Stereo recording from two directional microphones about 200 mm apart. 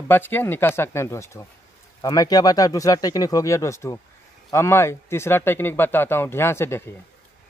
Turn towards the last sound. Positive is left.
turn(degrees=10)  # may be behind; listen again after turning